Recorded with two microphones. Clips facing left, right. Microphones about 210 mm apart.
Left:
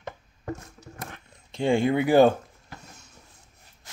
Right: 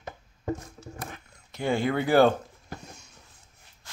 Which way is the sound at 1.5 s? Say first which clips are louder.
Left 4 dB; 25° left (ahead or behind).